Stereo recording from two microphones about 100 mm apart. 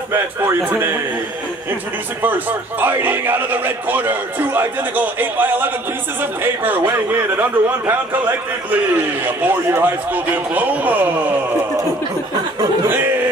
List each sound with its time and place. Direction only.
0.1 s a man's voice: 25° right (ahead or behind)
2.2 s a man's voice: 20° right (ahead or behind)
12.8 s music: 20° right (ahead or behind)